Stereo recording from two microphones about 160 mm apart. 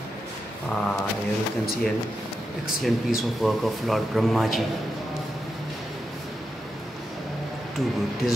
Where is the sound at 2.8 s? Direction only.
Centre (ahead or behind).